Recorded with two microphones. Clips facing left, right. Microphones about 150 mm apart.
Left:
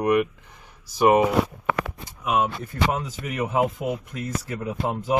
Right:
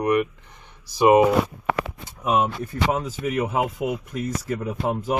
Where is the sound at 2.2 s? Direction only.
30° right (ahead or behind).